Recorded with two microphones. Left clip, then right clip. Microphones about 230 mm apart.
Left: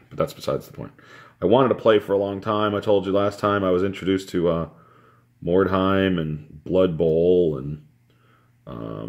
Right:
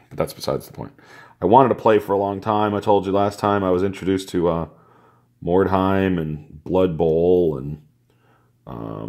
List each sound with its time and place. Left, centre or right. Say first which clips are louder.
0.1 s speech: right 1 dB; right
8.6 s speech: right 2 dB; right